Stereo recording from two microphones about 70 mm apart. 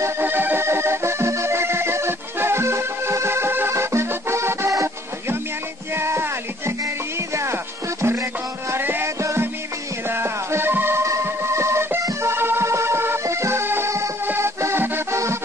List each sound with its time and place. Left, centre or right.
0.2 s music: right
5.9 s a sound: right
8.0 s music: right
11.1 s music: right
14.2 s music: right